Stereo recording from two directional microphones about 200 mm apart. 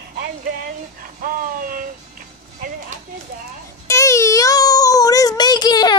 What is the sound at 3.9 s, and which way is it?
Child singing, 15° left (ahead or behind).